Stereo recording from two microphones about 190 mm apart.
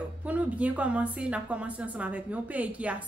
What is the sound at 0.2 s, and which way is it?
A woman's voice, 5° right (ahead or behind).